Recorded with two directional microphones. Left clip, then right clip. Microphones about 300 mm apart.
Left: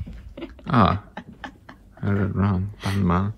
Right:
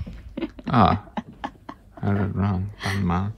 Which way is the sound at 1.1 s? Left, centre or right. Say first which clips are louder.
Right 5 dB; right.